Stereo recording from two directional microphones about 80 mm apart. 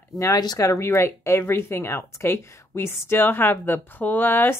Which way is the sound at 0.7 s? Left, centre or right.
Left.